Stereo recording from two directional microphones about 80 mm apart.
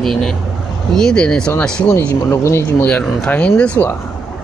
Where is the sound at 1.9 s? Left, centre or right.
Left.